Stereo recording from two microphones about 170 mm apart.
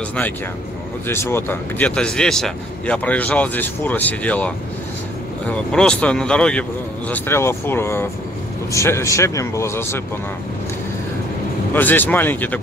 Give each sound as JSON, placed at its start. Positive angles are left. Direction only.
{"t": 1.0, "sound": "speech", "side_deg": 15}
{"t": 5.5, "sound": "speech", "side_deg": 5}
{"t": 11.7, "sound": "speech", "side_deg": 10}